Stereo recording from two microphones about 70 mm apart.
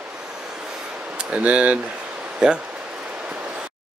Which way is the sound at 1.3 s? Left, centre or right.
Centre.